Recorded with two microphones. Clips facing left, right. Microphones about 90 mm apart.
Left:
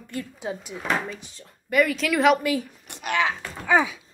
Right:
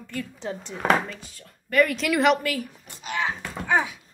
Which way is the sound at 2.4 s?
20° left (ahead or behind).